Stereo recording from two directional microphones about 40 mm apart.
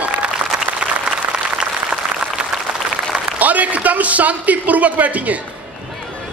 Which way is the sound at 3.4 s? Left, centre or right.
Right.